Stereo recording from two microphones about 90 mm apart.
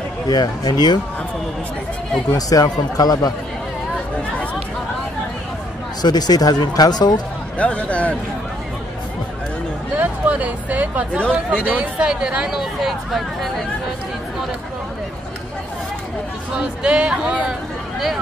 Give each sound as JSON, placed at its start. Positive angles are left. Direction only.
{"t": 0.3, "sound": "speech", "side_deg": 50}
{"t": 2.3, "sound": "speech", "side_deg": 45}
{"t": 6.0, "sound": "speech", "side_deg": 50}
{"t": 7.5, "sound": "a man's voice", "side_deg": 15}
{"t": 9.9, "sound": "a sound", "side_deg": -15}
{"t": 11.3, "sound": "speech", "side_deg": -15}
{"t": 16.5, "sound": "speech", "side_deg": -10}